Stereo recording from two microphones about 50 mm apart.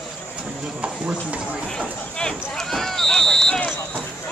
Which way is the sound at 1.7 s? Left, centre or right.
Centre.